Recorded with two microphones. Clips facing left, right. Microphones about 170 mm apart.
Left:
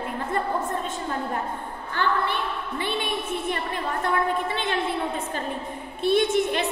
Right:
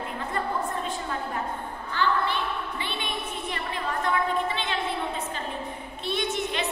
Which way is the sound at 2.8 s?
50° left (ahead or behind).